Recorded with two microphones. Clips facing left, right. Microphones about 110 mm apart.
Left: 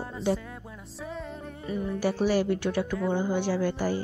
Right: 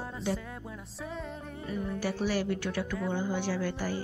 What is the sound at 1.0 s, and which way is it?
Music, centre (ahead or behind).